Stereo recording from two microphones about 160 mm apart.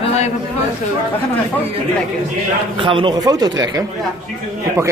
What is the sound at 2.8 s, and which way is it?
A man's voice, 30° right (ahead or behind).